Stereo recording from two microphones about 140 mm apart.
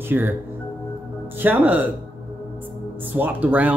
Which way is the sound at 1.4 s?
10° right (ahead or behind).